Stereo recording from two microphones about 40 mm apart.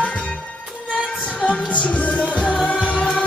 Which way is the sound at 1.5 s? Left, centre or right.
Left.